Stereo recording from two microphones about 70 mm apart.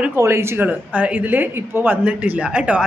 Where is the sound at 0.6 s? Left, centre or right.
Centre.